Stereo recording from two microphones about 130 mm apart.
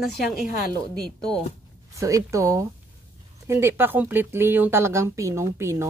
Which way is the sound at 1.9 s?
25° right (ahead or behind).